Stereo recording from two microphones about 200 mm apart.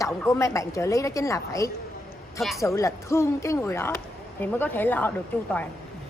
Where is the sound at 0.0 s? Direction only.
15° left (ahead or behind).